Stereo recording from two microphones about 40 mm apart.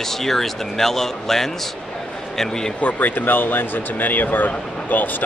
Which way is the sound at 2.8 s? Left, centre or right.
Left.